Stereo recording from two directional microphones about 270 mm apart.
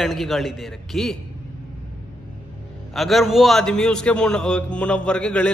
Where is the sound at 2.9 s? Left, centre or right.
Centre.